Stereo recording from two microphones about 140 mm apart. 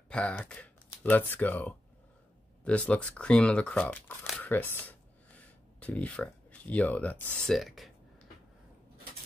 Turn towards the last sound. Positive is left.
turn(degrees=0)  # may be behind; listen again after turning